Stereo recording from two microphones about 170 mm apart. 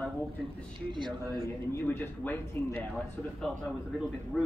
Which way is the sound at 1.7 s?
15° left (ahead or behind).